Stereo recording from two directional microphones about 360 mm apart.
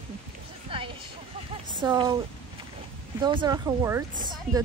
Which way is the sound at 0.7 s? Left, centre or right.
Centre.